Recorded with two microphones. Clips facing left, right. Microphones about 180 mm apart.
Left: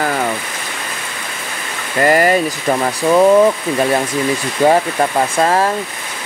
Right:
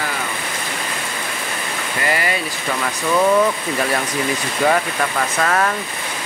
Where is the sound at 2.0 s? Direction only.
45° left (ahead or behind).